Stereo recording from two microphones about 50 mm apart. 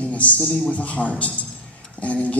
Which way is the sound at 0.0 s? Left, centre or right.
Left.